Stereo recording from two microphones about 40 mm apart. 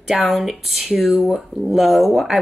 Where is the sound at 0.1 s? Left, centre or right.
Centre.